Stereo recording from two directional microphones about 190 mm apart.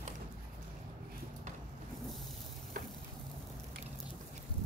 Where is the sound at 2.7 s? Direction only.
45° right (ahead or behind).